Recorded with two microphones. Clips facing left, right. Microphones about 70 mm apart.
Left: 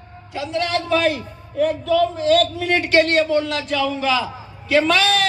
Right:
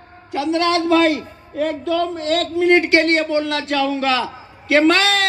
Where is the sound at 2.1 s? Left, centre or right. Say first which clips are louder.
Left 3 dB; right.